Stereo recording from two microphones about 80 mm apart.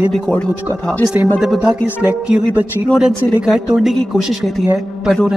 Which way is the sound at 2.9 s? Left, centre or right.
Centre.